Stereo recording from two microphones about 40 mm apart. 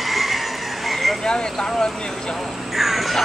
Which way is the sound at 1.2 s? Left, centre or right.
Left.